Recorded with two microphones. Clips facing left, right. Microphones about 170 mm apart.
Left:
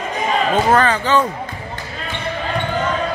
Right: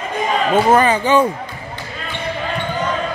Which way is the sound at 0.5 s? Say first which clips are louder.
Right 3 dB; 10° right (ahead or behind).